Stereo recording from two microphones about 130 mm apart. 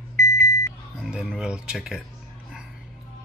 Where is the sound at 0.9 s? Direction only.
5° right (ahead or behind).